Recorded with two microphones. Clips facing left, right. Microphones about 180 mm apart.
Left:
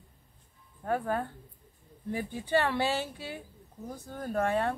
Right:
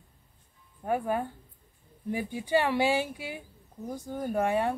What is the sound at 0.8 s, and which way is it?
Speech, 15° right (ahead or behind).